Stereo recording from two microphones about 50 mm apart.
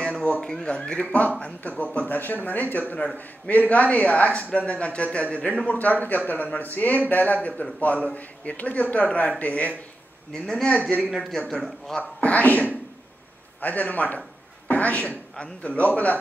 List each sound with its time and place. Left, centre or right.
0.0 s a man's voice: left
10.3 s speech: centre
12.2 s a man's voice: left